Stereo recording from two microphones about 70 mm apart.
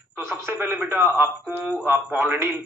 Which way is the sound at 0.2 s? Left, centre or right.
Right.